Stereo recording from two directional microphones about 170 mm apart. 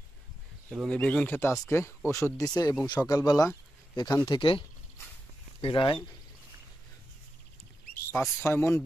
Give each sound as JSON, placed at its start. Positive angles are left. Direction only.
{"t": 0.7, "sound": "speech", "side_deg": 5}
{"t": 8.1, "sound": "speech", "side_deg": 15}